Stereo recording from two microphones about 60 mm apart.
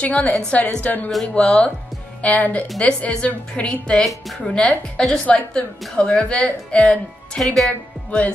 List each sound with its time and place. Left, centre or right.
0.0 s a woman's voice: left
7.4 s speech: centre